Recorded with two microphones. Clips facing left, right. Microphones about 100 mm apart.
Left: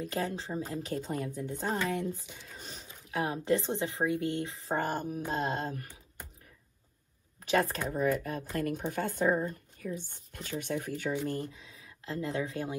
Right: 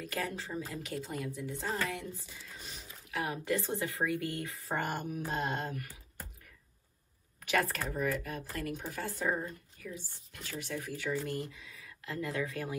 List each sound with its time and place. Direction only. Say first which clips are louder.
0.0 s speech: left 4 dB; 30° left (ahead or behind)
7.4 s a woman's voice: left 3 dB; 30° left (ahead or behind)